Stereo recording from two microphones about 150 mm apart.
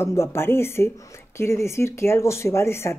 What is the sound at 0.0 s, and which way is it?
Speech, 15° left (ahead or behind).